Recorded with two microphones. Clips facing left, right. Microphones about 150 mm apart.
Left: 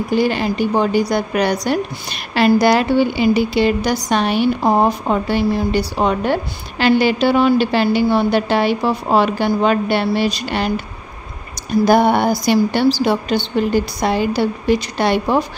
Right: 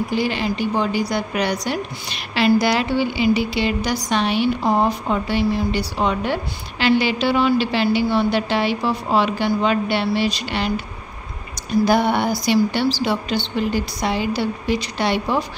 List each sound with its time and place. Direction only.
0.1 s a woman's voice: 45° left (ahead or behind)
11.8 s a woman's voice: 50° left (ahead or behind)